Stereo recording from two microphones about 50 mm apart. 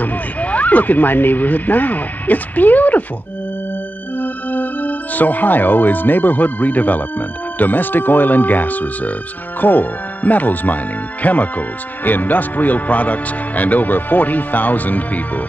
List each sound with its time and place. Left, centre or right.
0.0 s speech: left
4.2 s speech: left